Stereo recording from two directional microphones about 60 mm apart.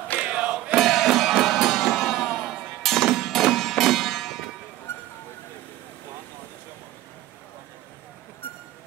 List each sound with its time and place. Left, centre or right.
0.2 s music: centre
0.7 s music: centre